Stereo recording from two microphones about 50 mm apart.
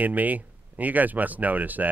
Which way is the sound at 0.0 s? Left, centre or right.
Right.